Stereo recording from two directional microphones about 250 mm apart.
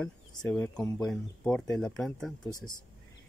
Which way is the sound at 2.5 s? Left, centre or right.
Left.